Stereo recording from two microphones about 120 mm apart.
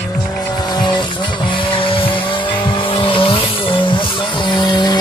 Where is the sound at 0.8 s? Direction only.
40° left (ahead or behind).